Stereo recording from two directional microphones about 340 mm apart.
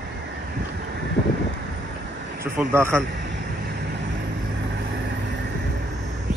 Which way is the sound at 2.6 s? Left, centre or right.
Centre.